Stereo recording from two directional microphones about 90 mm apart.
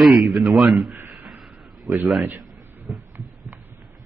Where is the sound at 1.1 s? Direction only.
10° right (ahead or behind).